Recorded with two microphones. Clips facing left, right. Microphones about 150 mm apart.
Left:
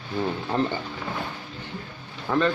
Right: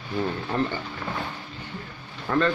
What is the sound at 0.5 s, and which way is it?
Speech, 20° left (ahead or behind).